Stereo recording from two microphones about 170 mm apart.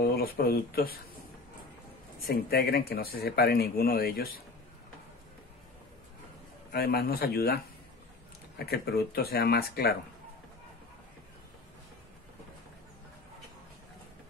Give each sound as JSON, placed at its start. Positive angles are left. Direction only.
{"t": 0.0, "sound": "speech", "side_deg": 60}
{"t": 2.2, "sound": "speech", "side_deg": 65}
{"t": 6.7, "sound": "speech", "side_deg": 65}